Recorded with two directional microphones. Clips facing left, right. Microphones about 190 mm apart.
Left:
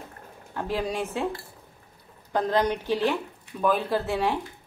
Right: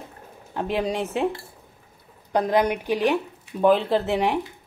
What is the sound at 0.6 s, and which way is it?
Speech, 20° right (ahead or behind).